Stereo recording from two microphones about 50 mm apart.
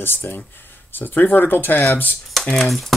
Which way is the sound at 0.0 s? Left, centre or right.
Left.